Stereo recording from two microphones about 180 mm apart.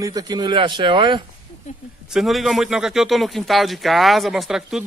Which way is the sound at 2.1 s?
Centre (ahead or behind).